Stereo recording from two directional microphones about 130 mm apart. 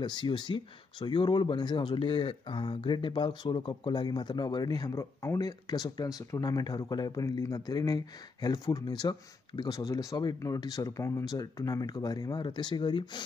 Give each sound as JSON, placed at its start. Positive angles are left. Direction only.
{"t": 0.0, "sound": "speech", "side_deg": 35}